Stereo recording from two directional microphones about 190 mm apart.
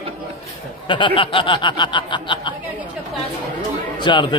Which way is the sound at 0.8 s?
25° left (ahead or behind).